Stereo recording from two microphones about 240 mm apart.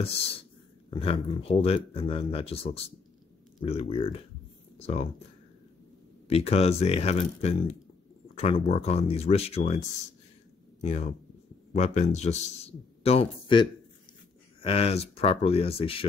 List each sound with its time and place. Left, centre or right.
0.0 s speech: left
6.2 s speech: left
10.8 s speech: left